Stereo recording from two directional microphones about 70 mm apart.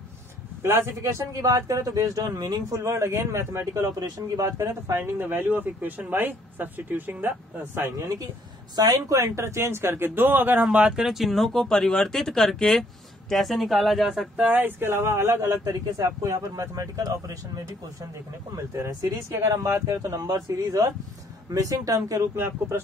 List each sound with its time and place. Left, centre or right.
0.6 s speech: right
1.3 s speech: right
2.7 s speech: right
8.7 s speech: right
10.6 s speech: centre
14.3 s speech: right
22.3 s speech: right